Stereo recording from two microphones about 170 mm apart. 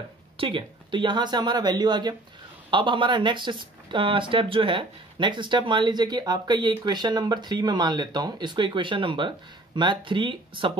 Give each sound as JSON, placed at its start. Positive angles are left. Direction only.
{"t": 0.4, "sound": "speech", "side_deg": -30}